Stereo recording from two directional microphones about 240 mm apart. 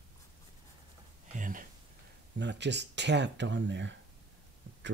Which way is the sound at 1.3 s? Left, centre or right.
Right.